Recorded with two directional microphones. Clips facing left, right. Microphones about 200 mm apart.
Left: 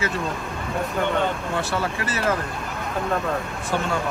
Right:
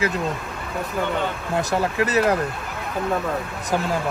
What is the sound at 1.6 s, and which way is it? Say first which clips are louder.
Speech: right 8 dB; 40° right (ahead or behind).